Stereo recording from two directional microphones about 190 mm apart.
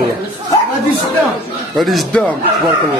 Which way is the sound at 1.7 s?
Centre (ahead or behind).